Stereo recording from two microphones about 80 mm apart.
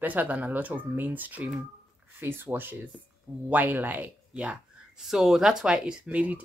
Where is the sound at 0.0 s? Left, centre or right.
Right.